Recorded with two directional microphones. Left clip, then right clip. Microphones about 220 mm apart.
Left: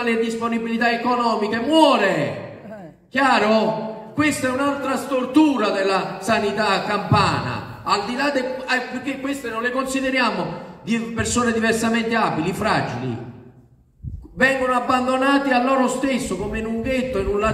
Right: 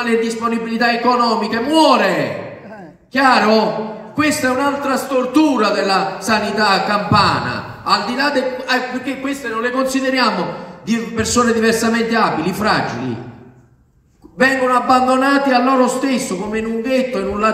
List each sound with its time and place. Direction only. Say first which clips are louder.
0.0 s a man's voice: right 4 dB; 45° right (ahead or behind)
14.4 s a man's voice: right 4 dB; 45° right (ahead or behind)